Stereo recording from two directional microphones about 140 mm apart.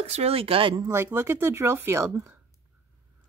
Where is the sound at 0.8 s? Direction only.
15° right (ahead or behind).